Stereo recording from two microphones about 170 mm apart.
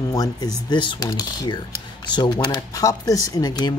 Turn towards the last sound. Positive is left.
turn(degrees=25)  # may be behind; listen again after turning